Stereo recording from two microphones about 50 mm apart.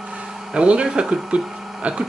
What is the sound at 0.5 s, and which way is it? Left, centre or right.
Speech, right.